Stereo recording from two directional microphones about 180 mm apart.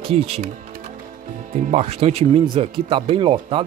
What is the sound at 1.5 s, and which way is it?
Speech, 35° right (ahead or behind).